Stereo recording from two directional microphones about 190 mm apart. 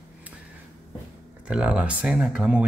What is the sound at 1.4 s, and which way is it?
Speech, 5° right (ahead or behind).